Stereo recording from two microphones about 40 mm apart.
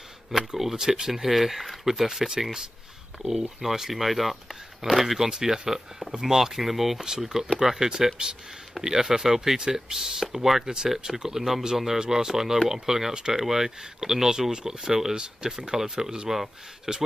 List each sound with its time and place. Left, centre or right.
0.6 s speech: centre